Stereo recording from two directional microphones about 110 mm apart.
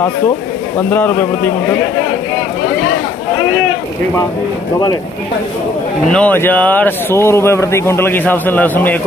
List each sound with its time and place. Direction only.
0.7 s speech: 15° left (ahead or behind)
6.0 s speech: 10° left (ahead or behind)